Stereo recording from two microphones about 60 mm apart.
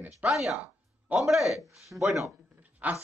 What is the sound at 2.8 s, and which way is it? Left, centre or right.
Speech, right.